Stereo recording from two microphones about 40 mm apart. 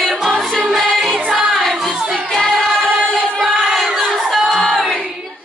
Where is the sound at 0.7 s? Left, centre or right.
Centre.